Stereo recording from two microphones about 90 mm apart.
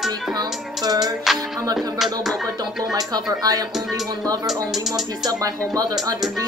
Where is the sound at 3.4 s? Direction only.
45° right (ahead or behind).